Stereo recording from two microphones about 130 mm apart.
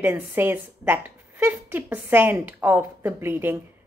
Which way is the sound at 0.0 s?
15° right (ahead or behind).